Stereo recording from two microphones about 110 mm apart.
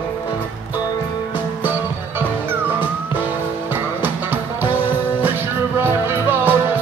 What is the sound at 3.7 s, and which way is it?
Music, 20° right (ahead or behind).